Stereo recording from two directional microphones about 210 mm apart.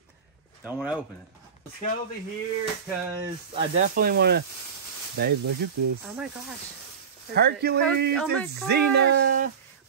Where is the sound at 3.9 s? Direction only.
50° right (ahead or behind).